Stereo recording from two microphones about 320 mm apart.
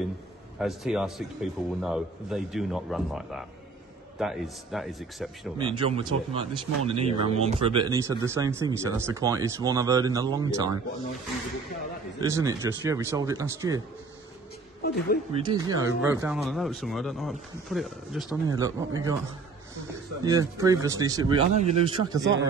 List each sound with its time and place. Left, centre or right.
0.6 s speech: centre
5.6 s speech: centre
12.2 s speech: centre
14.8 s speech: left
15.3 s speech: centre
20.2 s speech: centre
22.2 s speech: right